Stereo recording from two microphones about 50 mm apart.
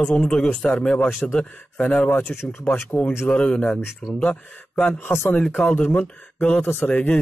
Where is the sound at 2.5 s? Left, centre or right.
Left.